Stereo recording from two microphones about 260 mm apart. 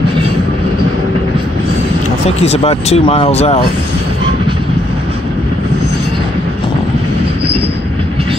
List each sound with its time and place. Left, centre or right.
2.4 s speech: left